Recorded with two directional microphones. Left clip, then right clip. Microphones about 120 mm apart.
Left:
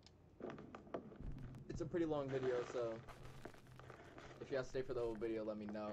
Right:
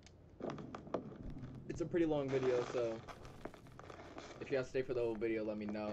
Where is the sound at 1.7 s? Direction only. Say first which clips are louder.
Right 5 dB; centre (ahead or behind).